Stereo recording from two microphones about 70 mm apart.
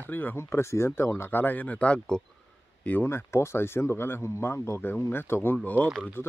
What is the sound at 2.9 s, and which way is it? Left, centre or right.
Speech, left.